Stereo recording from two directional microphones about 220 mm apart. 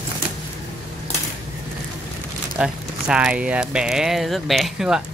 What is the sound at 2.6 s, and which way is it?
Speech, 5° right (ahead or behind).